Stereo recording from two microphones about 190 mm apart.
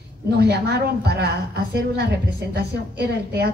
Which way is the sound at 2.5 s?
60° right (ahead or behind).